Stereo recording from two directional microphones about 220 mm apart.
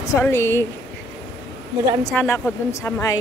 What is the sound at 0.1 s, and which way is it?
Speech, 10° left (ahead or behind).